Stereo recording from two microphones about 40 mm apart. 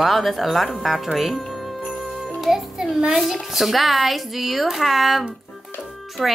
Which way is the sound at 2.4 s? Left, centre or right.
Centre.